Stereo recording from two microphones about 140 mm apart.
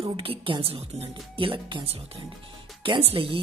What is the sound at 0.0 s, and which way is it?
Speech, 40° right (ahead or behind).